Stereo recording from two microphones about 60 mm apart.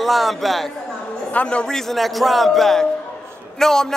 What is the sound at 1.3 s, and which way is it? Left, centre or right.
A man's voice, centre.